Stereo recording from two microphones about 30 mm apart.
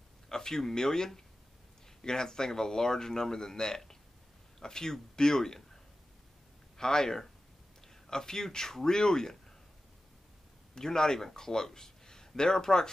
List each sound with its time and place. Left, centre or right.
0.3 s speech: left
6.8 s speech: left
10.7 s a man's voice: left